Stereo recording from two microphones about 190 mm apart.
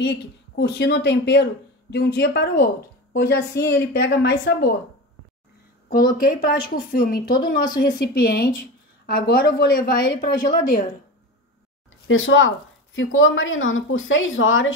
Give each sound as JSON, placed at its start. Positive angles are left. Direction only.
{"t": 0.0, "sound": "speech", "side_deg": 60}
{"t": 6.1, "sound": "a woman's voice", "side_deg": 50}
{"t": 7.6, "sound": "a woman's voice", "side_deg": 20}
{"t": 8.0, "sound": "a woman's voice", "side_deg": 55}
{"t": 12.1, "sound": "a woman's voice", "side_deg": 90}